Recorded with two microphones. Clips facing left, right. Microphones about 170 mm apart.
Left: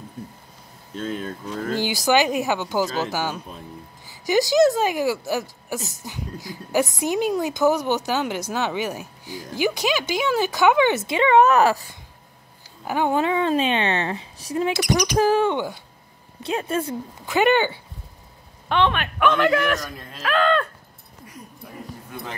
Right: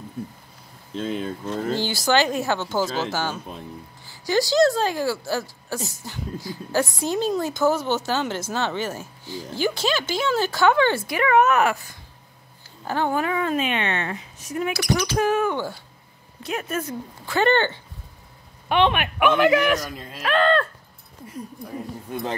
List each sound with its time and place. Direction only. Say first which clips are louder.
1.8 s speech: left 3 dB; 15° left (ahead or behind); by 12.0 s 35° left (ahead or behind)
12.8 s a woman's voice: left 2 dB; 15° left (ahead or behind)
15.1 s speech: left 4 dB; 30° left (ahead or behind)
15.5 s speech: left 2 dB; 15° left (ahead or behind)
16.4 s a woman's voice: left 3 dB; 30° left (ahead or behind)
17.3 s speech: left 1 dB; 15° left (ahead or behind)
18.7 s speech: right 1 dB; 15° right (ahead or behind)